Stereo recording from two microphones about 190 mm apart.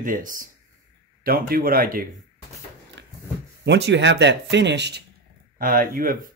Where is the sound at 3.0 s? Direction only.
65° right (ahead or behind).